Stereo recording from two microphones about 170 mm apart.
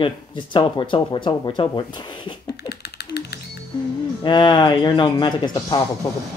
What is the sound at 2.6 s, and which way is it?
Typing, 75° left (ahead or behind).